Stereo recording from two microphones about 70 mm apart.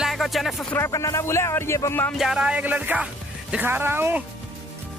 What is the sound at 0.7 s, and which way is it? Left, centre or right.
Speech, left.